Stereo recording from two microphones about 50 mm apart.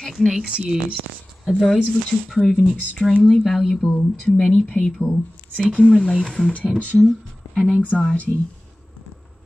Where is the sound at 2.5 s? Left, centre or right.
Left.